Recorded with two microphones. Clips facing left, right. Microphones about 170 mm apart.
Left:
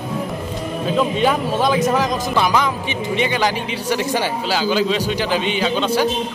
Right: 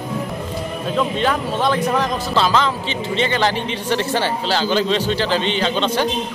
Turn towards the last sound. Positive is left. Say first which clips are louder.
# left 1 dB
turn(degrees=10)  # may be behind; listen again after turning